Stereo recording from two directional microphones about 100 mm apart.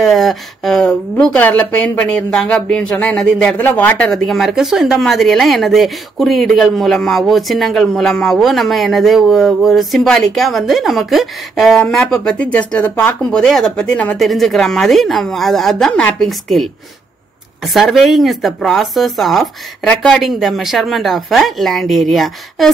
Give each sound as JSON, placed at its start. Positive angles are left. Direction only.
{"t": 0.0, "sound": "speech", "side_deg": 0}
{"t": 1.2, "sound": "speech", "side_deg": 15}
{"t": 4.1, "sound": "speech", "side_deg": 0}
{"t": 16.0, "sound": "speech", "side_deg": 15}
{"t": 16.3, "sound": "speech", "side_deg": 0}
{"t": 17.7, "sound": "speech", "side_deg": 0}